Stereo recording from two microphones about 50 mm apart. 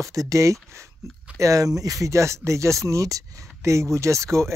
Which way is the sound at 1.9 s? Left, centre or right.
Right.